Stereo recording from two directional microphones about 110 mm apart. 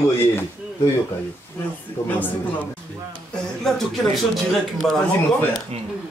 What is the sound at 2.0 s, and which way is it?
Speech, 15° left (ahead or behind).